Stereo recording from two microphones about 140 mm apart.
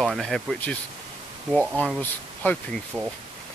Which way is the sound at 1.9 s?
10° left (ahead or behind).